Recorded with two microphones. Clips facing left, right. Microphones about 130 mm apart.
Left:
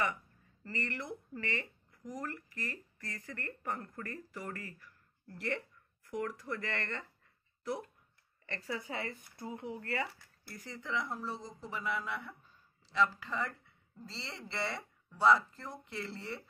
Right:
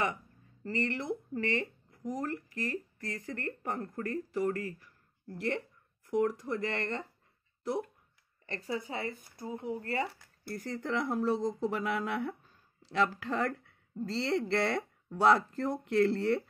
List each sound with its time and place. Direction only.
0.7 s speech: 25° right (ahead or behind)
8.5 s speech: 25° right (ahead or behind)
10.5 s speech: 45° right (ahead or behind)
11.0 s speech: 60° right (ahead or behind)